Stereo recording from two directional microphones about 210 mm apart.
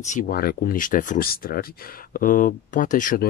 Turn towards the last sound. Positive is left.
turn(degrees=40)  # may be behind; listen again after turning